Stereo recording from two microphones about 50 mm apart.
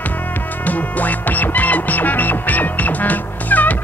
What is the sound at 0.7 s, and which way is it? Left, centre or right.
Music, left.